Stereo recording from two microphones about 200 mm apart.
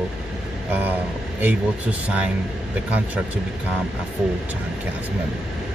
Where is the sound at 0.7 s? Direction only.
10° right (ahead or behind).